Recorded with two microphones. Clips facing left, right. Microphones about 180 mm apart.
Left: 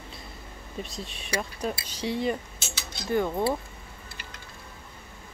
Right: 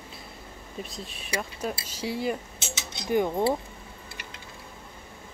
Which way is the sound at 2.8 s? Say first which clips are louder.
Right 1 dB; 20° right (ahead or behind).